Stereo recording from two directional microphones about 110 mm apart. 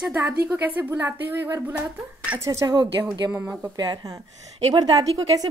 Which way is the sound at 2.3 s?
30° right (ahead or behind).